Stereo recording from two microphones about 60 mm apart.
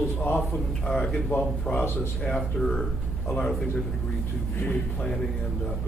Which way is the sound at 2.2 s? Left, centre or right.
Centre.